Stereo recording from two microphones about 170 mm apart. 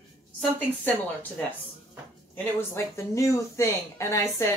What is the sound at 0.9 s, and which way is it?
Speech, 10° left (ahead or behind).